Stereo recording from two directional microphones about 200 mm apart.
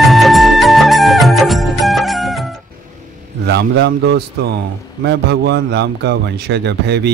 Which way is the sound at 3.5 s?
55° right (ahead or behind).